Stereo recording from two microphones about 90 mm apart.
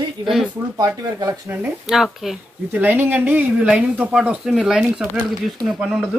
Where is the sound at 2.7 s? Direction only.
20° right (ahead or behind).